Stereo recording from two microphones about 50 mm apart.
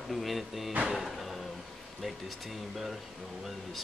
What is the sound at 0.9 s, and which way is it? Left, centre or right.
Music, centre.